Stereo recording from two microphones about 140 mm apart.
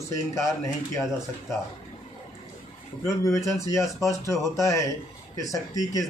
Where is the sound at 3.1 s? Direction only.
20° left (ahead or behind).